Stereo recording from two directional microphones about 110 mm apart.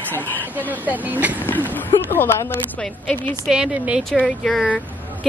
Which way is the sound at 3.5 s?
10° right (ahead or behind).